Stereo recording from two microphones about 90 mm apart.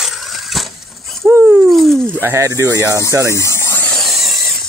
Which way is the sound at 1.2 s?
30° right (ahead or behind).